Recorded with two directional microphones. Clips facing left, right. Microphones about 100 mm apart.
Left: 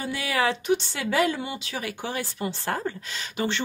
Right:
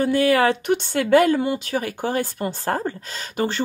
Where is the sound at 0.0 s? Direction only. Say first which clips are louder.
Right 9 dB; 50° right (ahead or behind).